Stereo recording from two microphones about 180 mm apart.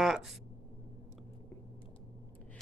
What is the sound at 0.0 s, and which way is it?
Speech, centre (ahead or behind).